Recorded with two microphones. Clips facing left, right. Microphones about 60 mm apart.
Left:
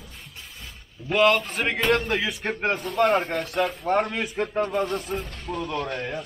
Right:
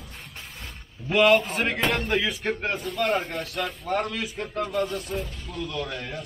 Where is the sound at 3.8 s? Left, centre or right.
Centre.